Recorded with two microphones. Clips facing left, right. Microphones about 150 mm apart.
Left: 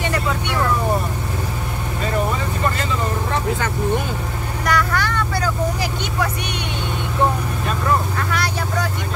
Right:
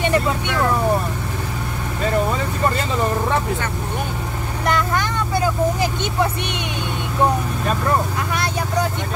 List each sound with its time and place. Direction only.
4.6 s vehicle: 20° right (ahead or behind)
8.3 s vehicle: 20° right (ahead or behind)